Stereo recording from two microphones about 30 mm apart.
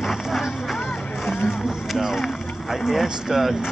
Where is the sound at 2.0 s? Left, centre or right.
Centre.